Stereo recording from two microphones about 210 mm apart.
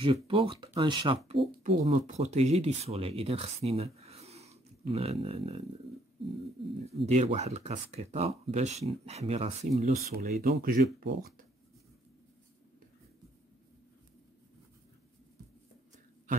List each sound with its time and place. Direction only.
0.0 s speech: 25° right (ahead or behind)
6.9 s speech: 30° right (ahead or behind)
10.1 s speech: 45° right (ahead or behind)